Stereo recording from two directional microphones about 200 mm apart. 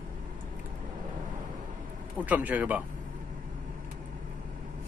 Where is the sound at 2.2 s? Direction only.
10° right (ahead or behind).